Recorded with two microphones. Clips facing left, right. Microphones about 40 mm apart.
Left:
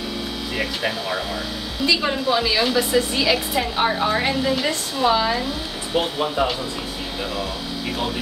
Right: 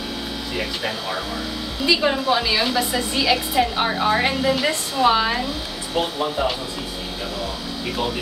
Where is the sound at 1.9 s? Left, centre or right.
Centre.